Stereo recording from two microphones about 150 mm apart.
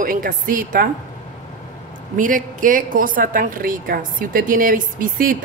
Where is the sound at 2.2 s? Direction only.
60° right (ahead or behind).